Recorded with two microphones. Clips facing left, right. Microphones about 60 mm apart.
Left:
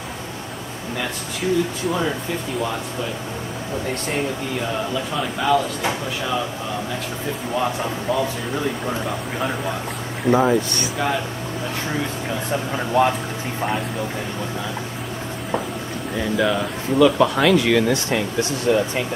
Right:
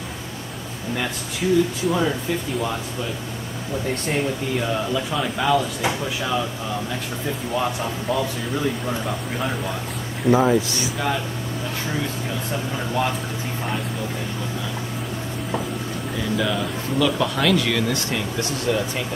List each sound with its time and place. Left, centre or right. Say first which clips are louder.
0.9 s speech: even; centre
3.9 s speech: right 1 dB; centre
7.5 s speech: left 2 dB; centre
11.9 s speech: left 1 dB; centre
16.2 s speech: left 3 dB; centre